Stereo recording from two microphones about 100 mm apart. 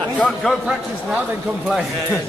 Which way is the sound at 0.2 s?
10° left (ahead or behind).